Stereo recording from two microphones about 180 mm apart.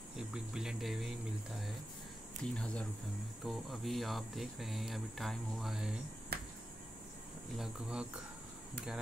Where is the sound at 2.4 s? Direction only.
5° left (ahead or behind).